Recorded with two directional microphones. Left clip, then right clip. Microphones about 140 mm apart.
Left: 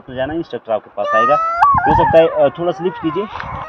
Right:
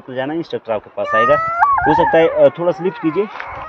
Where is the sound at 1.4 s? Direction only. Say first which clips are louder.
Left 2 dB; 90° left.